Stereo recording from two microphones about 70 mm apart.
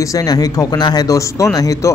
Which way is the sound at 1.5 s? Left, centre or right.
Left.